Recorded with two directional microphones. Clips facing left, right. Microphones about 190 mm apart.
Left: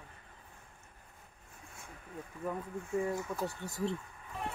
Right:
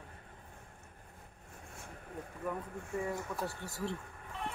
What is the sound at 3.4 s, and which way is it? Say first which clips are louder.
Speech: left 3 dB; 20° left (ahead or behind).